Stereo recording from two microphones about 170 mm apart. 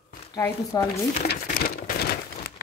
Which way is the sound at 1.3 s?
65° left (ahead or behind).